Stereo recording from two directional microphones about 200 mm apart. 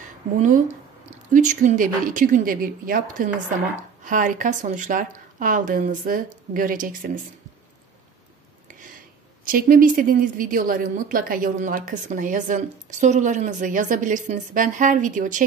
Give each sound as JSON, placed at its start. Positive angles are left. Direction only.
{"t": 0.4, "sound": "a woman's voice", "side_deg": -35}
{"t": 9.4, "sound": "a woman's voice", "side_deg": -45}